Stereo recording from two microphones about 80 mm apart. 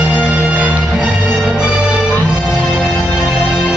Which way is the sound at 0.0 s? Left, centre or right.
Centre.